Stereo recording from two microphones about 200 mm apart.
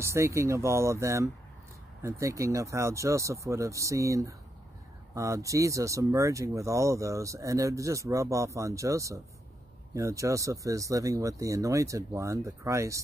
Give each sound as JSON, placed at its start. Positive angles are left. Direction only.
{"t": 0.0, "sound": "speech", "side_deg": -15}